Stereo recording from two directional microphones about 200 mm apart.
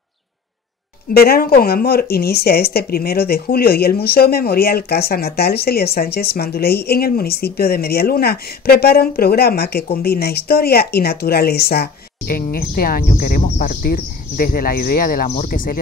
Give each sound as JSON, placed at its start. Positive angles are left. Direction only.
{"t": 1.1, "sound": "speech", "side_deg": 50}